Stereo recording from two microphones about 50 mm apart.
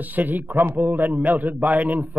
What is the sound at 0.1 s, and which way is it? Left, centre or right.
A man's voice, right.